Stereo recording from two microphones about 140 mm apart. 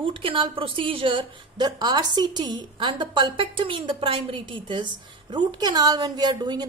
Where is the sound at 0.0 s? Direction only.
40° right (ahead or behind).